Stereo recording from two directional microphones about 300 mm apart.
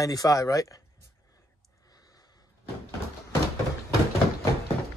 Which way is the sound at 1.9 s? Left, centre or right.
Centre.